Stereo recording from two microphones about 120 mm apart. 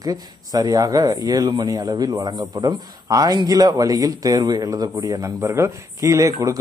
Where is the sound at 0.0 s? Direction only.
30° right (ahead or behind).